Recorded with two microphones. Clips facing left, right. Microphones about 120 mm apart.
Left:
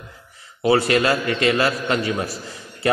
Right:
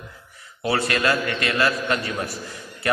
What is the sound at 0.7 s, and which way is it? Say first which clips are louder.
A man's voice: left 5 dB; 25° left (ahead or behind).